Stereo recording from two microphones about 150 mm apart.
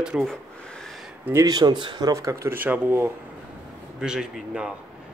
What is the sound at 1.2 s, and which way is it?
Speech, 20° right (ahead or behind).